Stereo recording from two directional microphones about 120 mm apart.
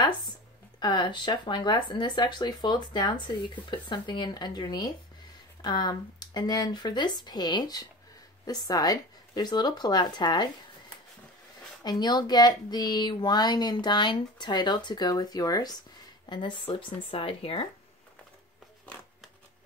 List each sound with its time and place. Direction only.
0.7 s speech: 40° left (ahead or behind)
11.8 s speech: 35° left (ahead or behind)